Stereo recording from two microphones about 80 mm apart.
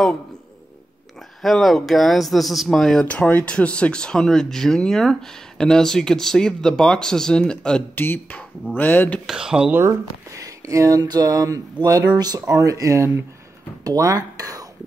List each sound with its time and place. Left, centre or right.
1.4 s speech: centre
3.1 s speech: centre
7.9 s speech: left
9.2 s speech: centre
9.8 s speech: right